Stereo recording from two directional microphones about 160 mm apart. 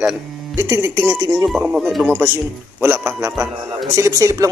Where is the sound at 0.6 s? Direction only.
15° right (ahead or behind).